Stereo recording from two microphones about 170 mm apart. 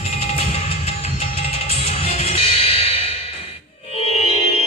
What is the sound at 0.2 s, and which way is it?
Music, 40° left (ahead or behind).